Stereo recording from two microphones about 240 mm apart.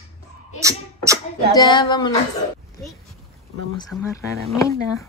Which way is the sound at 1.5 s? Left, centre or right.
Centre.